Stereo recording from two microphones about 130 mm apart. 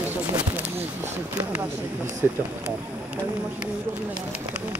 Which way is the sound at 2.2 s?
15° right (ahead or behind).